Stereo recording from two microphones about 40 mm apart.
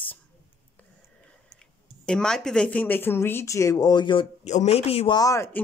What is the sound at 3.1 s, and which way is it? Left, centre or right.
Speech, left.